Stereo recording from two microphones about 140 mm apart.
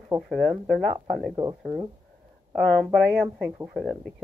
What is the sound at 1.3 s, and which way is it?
Speech, 30° right (ahead or behind).